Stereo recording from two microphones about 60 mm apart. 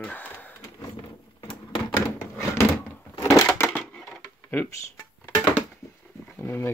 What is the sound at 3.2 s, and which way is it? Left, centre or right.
Crushing, left.